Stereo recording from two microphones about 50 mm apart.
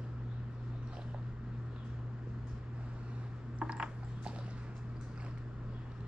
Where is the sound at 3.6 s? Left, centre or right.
Right.